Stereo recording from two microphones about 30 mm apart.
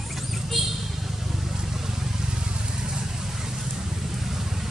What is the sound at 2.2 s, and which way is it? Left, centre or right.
Vehicle, right.